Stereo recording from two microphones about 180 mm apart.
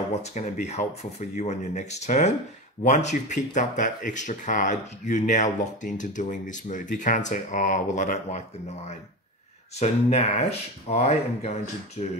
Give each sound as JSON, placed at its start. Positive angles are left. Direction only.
{"t": 0.2, "sound": "speech", "side_deg": 40}
{"t": 9.8, "sound": "speech", "side_deg": 40}